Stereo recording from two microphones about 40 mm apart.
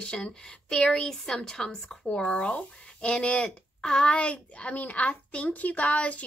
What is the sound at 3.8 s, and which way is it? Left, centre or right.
Speech, centre.